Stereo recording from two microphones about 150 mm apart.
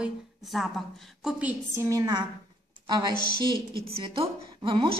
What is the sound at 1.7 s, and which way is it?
A woman's voice, 20° right (ahead or behind).